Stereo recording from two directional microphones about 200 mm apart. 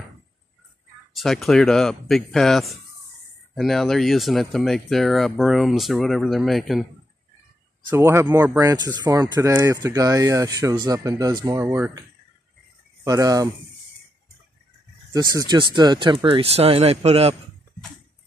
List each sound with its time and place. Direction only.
1.1 s speech: centre (ahead or behind)
7.9 s speech: 15° right (ahead or behind)
13.0 s speech: 15° right (ahead or behind)
15.1 s speech: 20° right (ahead or behind)